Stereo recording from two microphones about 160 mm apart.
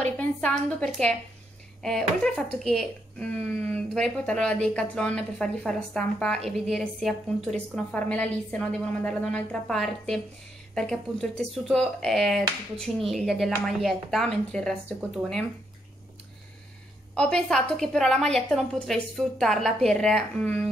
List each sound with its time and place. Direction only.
0.0 s a sound: 10° left (ahead or behind)
1.8 s a woman's voice: 5° left (ahead or behind)
17.1 s a woman's voice: 5° left (ahead or behind)